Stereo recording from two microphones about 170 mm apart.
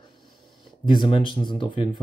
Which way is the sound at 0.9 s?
30° left (ahead or behind).